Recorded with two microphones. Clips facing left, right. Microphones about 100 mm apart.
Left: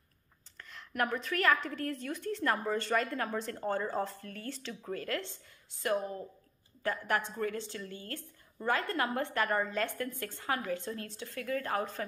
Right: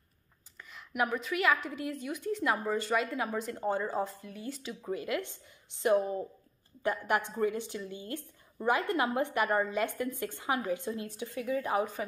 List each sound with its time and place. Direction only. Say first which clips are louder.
0.6 s a woman's voice: right 2 dB; 5° right (ahead or behind)